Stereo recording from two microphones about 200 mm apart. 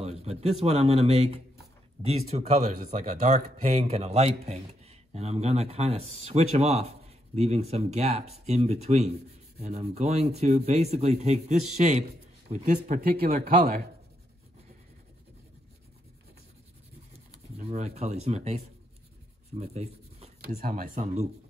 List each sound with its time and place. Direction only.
0.0 s a man's voice: 30° right (ahead or behind); by 13.8 s 50° right (ahead or behind)
17.6 s speech: 30° right (ahead or behind)
19.5 s a sound: 30° right (ahead or behind)
20.6 s speech: 45° right (ahead or behind)